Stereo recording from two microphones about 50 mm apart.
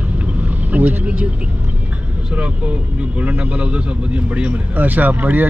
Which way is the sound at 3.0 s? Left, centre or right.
Right.